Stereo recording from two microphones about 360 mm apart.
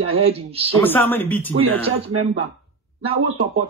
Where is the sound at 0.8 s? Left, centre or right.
Centre.